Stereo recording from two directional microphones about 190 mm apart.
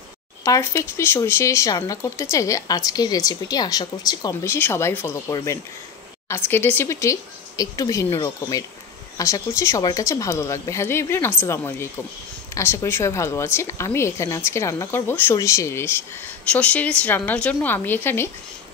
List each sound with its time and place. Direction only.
0.5 s a woman's voice: 15° left (ahead or behind)